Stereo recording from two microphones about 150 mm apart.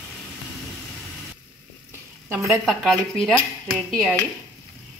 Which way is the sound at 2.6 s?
Centre (ahead or behind).